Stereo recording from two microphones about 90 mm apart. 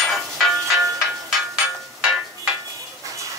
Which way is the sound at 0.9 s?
5° right (ahead or behind).